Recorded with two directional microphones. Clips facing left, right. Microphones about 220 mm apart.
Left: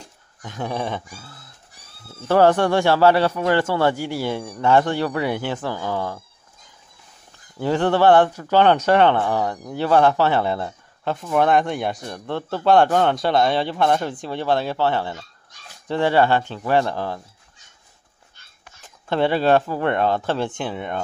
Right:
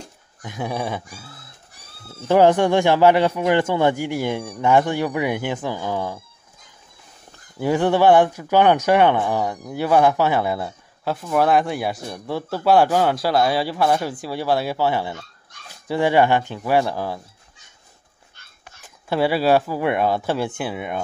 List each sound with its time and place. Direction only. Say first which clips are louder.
0.4 s speech: even; 10° right (ahead or behind)
7.6 s speech: right 1 dB; 10° right (ahead or behind)
19.0 s speech: even; 5° right (ahead or behind)